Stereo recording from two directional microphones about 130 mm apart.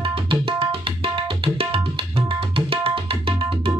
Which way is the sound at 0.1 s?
45° right (ahead or behind).